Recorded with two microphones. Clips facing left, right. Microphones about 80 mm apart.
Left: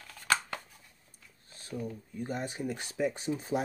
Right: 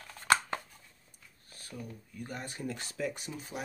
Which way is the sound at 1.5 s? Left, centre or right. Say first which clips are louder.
Left 6 dB; left.